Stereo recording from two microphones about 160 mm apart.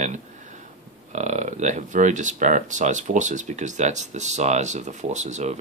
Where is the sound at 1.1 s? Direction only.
50° right (ahead or behind).